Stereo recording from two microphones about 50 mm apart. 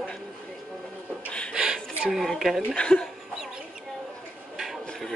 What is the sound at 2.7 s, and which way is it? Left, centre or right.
Speech, centre.